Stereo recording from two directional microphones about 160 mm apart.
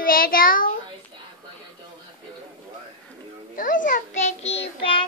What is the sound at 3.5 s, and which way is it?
Child singing, 55° left (ahead or behind).